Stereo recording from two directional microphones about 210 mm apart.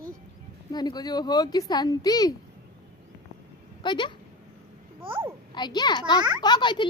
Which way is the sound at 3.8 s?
20° left (ahead or behind).